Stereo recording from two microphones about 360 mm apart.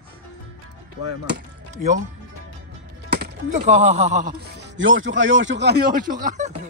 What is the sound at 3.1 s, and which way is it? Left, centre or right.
Speech, right.